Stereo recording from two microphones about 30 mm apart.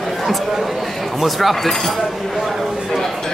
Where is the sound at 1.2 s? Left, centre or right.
Centre.